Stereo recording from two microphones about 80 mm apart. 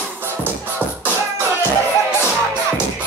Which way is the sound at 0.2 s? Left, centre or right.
Right.